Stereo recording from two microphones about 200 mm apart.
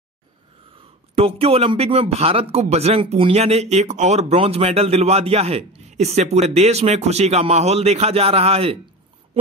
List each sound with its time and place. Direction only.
1.1 s speech: 30° right (ahead or behind)